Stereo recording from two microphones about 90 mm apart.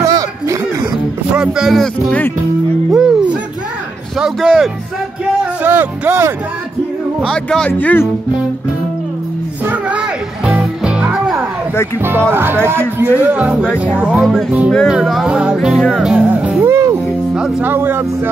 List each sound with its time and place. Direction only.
0.0 s a sound: 40° right (ahead or behind)
1.3 s speech: 5° right (ahead or behind)
1.8 s a man's voice: 10° left (ahead or behind)
2.9 s music: 10° right (ahead or behind)
5.6 s speech: 20° right (ahead or behind)
7.2 s a man's voice: 10° left (ahead or behind)
9.7 s music: 15° right (ahead or behind)
12.0 s speech: 25° right (ahead or behind)
13.2 s music: 15° right (ahead or behind)
16.0 s speech: 10° right (ahead or behind)
16.6 s music: 30° right (ahead or behind)
17.3 s speech: 15° right (ahead or behind)